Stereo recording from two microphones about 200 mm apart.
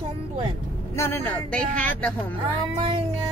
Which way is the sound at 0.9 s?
10° left (ahead or behind).